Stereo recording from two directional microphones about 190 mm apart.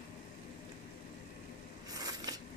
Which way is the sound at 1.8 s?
20° right (ahead or behind).